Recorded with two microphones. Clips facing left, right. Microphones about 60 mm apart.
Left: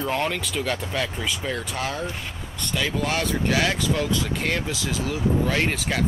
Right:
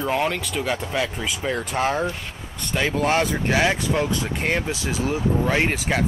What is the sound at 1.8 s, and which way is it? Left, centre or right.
Speech, right.